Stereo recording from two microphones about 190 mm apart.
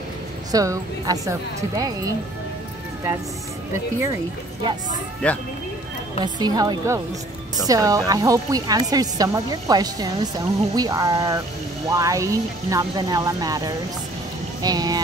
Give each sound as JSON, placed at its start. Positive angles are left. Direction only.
{"t": 0.5, "sound": "speech", "side_deg": -20}
{"t": 5.2, "sound": "speech", "side_deg": 5}
{"t": 6.2, "sound": "speech", "side_deg": -20}